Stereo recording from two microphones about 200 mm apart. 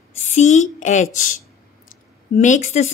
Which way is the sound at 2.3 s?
40° left (ahead or behind).